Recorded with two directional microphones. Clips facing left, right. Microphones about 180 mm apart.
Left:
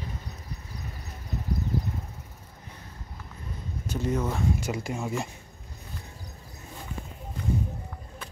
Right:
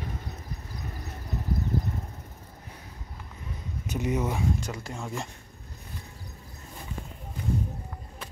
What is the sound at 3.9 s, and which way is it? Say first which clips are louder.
Speech: even; 15° right (ahead or behind).